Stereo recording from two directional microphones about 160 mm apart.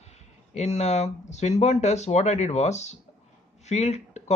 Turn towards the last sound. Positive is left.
turn(degrees=45)  # may be behind; listen again after turning